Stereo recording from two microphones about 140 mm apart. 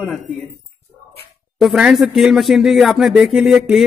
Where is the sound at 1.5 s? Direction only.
5° right (ahead or behind).